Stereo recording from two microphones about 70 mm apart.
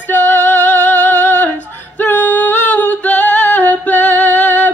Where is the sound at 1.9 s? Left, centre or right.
Left.